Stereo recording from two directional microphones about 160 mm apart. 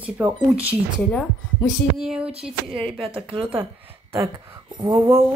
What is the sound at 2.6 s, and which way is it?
Speech, 35° right (ahead or behind).